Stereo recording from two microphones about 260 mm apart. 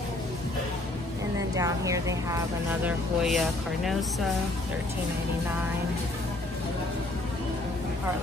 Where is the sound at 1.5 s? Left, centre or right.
Centre.